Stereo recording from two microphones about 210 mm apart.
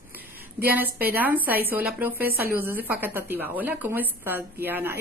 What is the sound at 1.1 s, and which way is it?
A woman's voice, 10° right (ahead or behind).